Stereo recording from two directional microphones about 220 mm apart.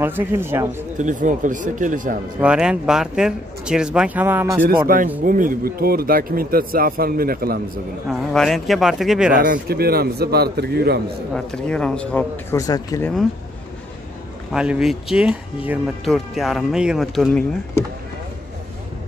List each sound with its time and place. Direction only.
0.0 s speech: 10° right (ahead or behind)
0.9 s speech: 35° right (ahead or behind)
2.4 s speech: 5° right (ahead or behind)
4.8 s speech: 40° right (ahead or behind)
8.1 s speech: centre (ahead or behind)
9.4 s speech: 40° right (ahead or behind)
11.3 s speech: 5° left (ahead or behind)
14.5 s speech: 5° right (ahead or behind)